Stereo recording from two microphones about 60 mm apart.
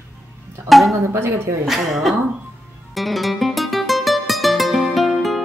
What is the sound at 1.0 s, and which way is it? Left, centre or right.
Speech, right.